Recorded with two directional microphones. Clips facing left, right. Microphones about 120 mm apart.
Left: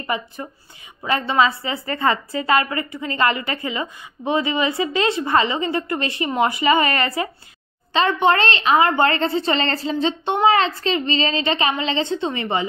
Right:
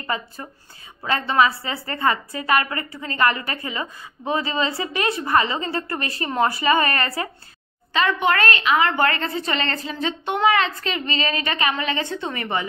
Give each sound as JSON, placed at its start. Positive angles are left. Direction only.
{"t": 0.0, "sound": "a woman's voice", "side_deg": 20}